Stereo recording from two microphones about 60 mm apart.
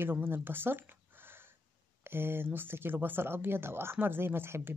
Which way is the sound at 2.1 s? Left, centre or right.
Right.